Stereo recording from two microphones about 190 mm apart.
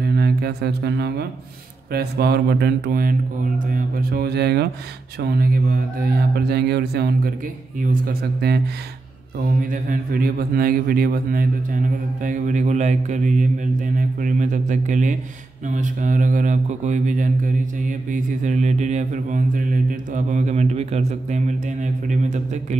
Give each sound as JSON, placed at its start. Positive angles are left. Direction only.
{"t": 0.0, "sound": "a sound", "side_deg": -55}
{"t": 1.9, "sound": "mantra", "side_deg": -55}
{"t": 7.8, "sound": "mantra", "side_deg": -50}
{"t": 9.6, "sound": "a man's voice", "side_deg": -45}
{"t": 13.9, "sound": "mantra", "side_deg": -40}